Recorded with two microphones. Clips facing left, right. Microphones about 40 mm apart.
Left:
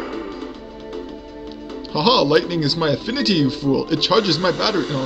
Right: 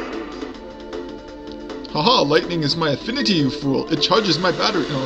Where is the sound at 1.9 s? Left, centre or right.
Centre.